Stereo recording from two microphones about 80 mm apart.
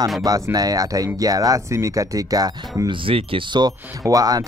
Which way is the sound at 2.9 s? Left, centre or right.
Right.